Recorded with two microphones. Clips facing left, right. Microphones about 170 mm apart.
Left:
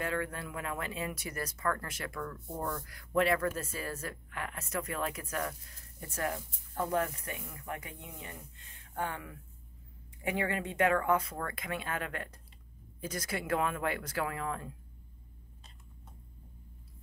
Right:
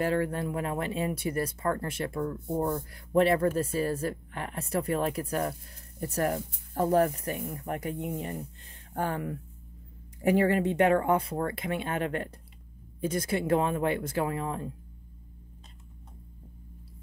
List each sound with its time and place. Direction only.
0.0 s speech: 30° right (ahead or behind)